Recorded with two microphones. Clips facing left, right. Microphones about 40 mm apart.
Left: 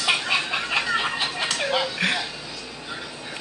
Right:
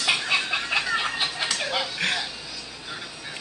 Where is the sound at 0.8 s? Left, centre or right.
Centre.